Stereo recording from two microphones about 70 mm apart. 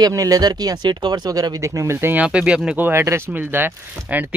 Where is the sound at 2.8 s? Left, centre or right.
Right.